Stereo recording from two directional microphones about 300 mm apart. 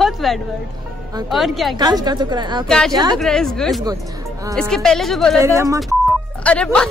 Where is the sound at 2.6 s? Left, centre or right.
Centre.